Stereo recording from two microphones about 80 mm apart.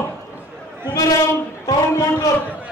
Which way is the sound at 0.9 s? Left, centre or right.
Left.